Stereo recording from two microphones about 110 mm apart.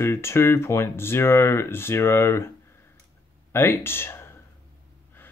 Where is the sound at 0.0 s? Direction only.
25° left (ahead or behind).